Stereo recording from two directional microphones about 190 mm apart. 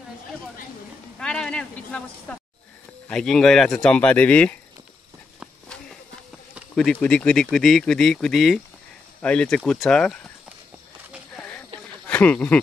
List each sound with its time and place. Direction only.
1.2 s speech: 5° left (ahead or behind)
6.7 s speech: 5° left (ahead or behind)
12.1 s speech: 10° left (ahead or behind)